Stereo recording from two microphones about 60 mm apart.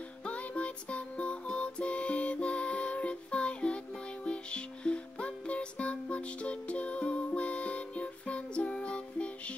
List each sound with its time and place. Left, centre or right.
0.2 s music: left